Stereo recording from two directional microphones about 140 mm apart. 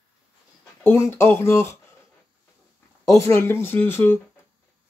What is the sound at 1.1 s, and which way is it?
Speech, 15° left (ahead or behind).